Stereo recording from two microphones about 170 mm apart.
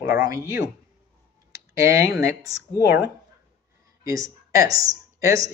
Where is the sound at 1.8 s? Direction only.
15° right (ahead or behind).